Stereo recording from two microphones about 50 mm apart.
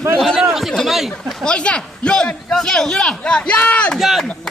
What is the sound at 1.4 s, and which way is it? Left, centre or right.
Speech, centre.